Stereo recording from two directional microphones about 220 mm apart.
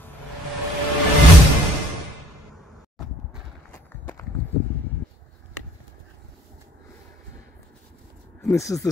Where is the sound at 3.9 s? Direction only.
10° left (ahead or behind).